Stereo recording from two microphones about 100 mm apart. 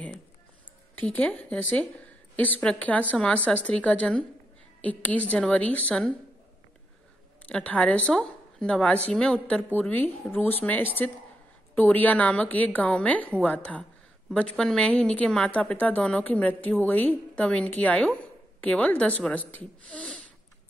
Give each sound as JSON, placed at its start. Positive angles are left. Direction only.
{"t": 0.9, "sound": "a woman's voice", "side_deg": 15}
{"t": 7.4, "sound": "a woman's voice", "side_deg": 15}